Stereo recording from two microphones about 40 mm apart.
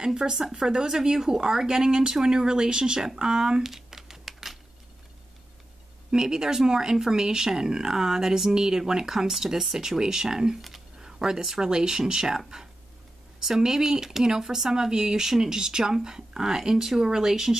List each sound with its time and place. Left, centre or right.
0.0 s speech: centre
3.6 s typing: centre
6.1 s speech: centre